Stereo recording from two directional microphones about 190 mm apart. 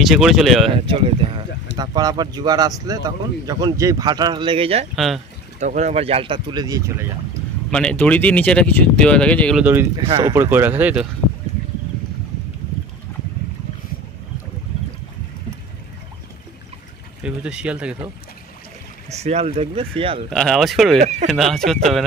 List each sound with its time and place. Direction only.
0.0 s speech: centre (ahead or behind)
0.7 s speech: 30° right (ahead or behind)
4.9 s speech: centre (ahead or behind)
5.6 s speech: 40° right (ahead or behind); by 6.8 s 20° right (ahead or behind)
7.7 s speech: 5° left (ahead or behind)
9.6 s speech: 10° right (ahead or behind)
9.9 s speech: 25° right (ahead or behind); by 11.1 s 10° right (ahead or behind)
17.2 s speech: 5° right (ahead or behind)
19.0 s speech: 35° right (ahead or behind)
20.2 s speech: 5° left (ahead or behind)
21.0 s speech: 40° right (ahead or behind)
21.3 s speech: centre (ahead or behind)